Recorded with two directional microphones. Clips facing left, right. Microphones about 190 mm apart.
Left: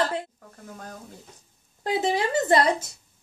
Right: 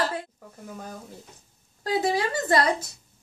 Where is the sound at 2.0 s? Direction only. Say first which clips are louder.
Left 3 dB; 25° left (ahead or behind).